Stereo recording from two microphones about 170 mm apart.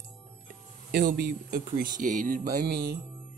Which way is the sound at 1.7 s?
50° right (ahead or behind).